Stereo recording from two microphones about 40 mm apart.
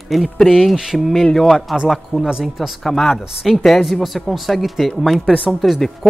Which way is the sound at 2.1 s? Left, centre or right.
Right.